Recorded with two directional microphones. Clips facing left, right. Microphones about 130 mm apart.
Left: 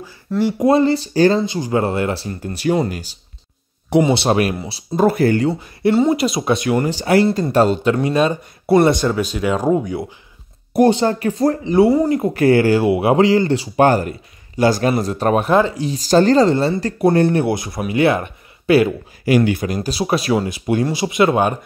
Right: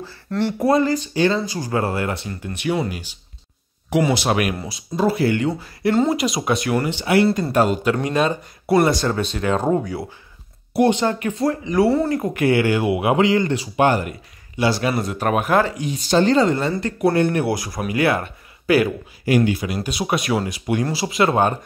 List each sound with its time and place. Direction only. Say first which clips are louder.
0.3 s speech: left 4 dB; 10° left (ahead or behind)
0.7 s speech: left 3 dB; 30° left (ahead or behind)
1.4 s speech: left 4 dB; 25° left (ahead or behind)
4.9 s speech: left 4 dB; 50° left (ahead or behind)
5.5 s speech: left 3 dB; 25° left (ahead or behind)
6.9 s speech: left 1 dB; 40° left (ahead or behind); by 9.1 s 25° left (ahead or behind)
9.3 s speech: left 2 dB; 10° left (ahead or behind)
10.7 s speech: left 4 dB; 35° left (ahead or behind)
11.9 s speech: left 4 dB; 15° left (ahead or behind)
12.4 s speech: left 5 dB; 40° left (ahead or behind); by 18.9 s 25° left (ahead or behind)
19.2 s speech: left 3 dB; 85° left
19.6 s speech: left 4 dB; 40° left (ahead or behind); by 21.5 s 15° left (ahead or behind)